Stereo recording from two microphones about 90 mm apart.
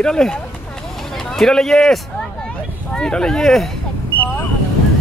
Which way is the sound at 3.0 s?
10° left (ahead or behind).